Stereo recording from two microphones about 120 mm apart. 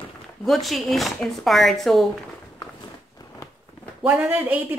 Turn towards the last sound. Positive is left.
turn(degrees=-15)  # may be behind; listen again after turning